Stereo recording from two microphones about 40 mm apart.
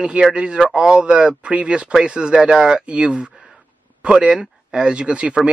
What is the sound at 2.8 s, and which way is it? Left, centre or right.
Speech, right.